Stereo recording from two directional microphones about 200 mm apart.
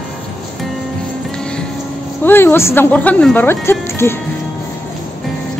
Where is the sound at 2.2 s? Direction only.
10° left (ahead or behind).